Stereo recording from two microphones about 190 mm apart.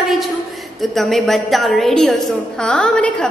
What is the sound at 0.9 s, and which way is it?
A woman's voice, centre (ahead or behind).